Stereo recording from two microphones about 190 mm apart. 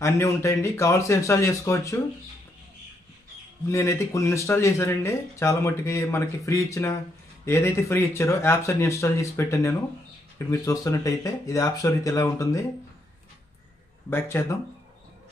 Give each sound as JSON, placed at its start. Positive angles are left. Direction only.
{"t": 0.0, "sound": "speech", "side_deg": 15}
{"t": 3.7, "sound": "speech", "side_deg": 15}
{"t": 14.1, "sound": "speech", "side_deg": 10}